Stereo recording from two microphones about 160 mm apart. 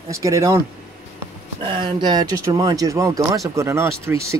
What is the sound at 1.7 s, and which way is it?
Speech, 30° right (ahead or behind).